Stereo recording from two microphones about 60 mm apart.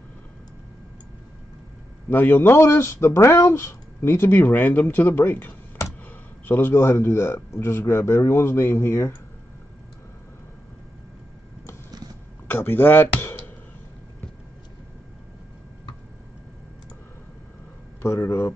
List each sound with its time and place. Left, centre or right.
2.0 s speech: left
12.4 s speech: left
18.0 s speech: left